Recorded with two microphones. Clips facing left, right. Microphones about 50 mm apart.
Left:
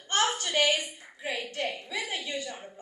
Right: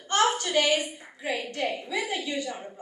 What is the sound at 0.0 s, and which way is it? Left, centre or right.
A woman's voice, right.